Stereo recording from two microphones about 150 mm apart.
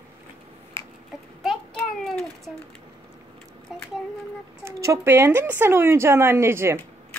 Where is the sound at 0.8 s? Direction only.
15° left (ahead or behind).